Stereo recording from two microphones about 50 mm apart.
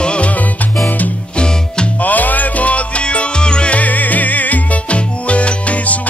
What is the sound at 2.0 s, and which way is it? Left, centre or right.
Music, left.